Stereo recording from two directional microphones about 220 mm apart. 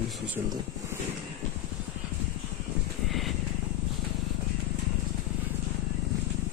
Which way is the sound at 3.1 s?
Centre (ahead or behind).